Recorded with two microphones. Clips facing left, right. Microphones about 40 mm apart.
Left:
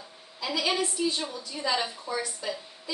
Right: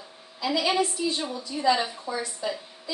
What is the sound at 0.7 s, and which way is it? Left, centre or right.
A woman's voice, centre.